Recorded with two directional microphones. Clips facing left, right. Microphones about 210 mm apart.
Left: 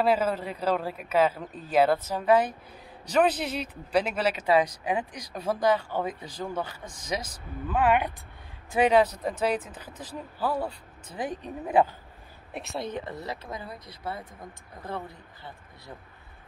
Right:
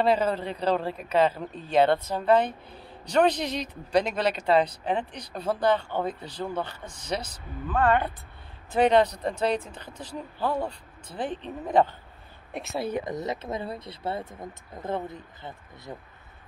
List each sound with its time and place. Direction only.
0.0 s a man's voice: 5° left (ahead or behind)
10.4 s speech: 5° left (ahead or behind); by 15.5 s 20° right (ahead or behind)